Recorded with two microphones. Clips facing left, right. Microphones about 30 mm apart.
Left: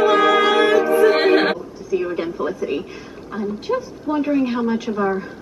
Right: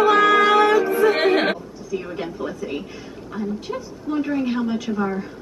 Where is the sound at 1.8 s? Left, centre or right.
Centre.